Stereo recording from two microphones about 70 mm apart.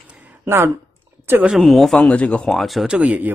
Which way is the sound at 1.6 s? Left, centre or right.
Centre.